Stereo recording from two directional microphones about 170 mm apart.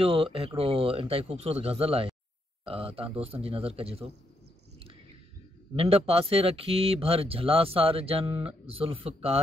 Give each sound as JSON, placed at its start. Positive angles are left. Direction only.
{"t": 0.0, "sound": "speech", "side_deg": -35}
{"t": 5.8, "sound": "speech", "side_deg": -35}